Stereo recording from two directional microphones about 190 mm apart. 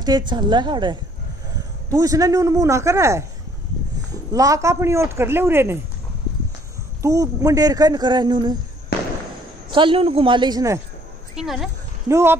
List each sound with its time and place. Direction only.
0.0 s a man's voice: 20° right (ahead or behind)
4.3 s a man's voice: 15° right (ahead or behind)
7.0 s speech: 15° right (ahead or behind)
9.7 s speech: 25° right (ahead or behind)
11.3 s speech: centre (ahead or behind)
12.1 s a man's voice: 15° right (ahead or behind)